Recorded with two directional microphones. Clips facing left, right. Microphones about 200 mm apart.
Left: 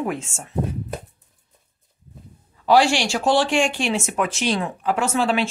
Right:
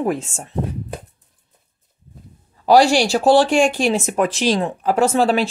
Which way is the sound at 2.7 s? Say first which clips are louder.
Right 4 dB; 40° right (ahead or behind).